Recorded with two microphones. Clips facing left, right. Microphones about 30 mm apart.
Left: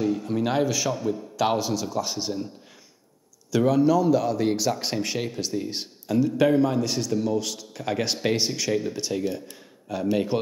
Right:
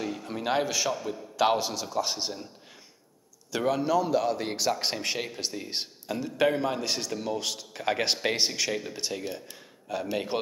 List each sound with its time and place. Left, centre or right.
0.0 s a sound: centre
0.4 s a man's voice: centre
3.5 s a man's voice: centre